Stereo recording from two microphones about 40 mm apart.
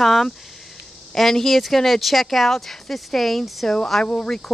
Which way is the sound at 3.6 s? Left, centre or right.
Centre.